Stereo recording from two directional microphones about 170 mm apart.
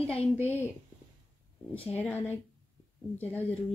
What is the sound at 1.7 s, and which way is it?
A woman's voice, 10° left (ahead or behind).